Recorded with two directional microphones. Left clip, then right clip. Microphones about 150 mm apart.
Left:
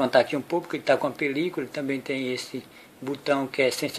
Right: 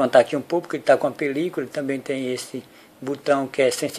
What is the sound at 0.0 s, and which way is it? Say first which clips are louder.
Speech: right 5 dB; 30° right (ahead or behind).